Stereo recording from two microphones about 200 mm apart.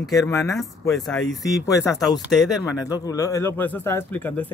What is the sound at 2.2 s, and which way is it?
Speech, centre (ahead or behind).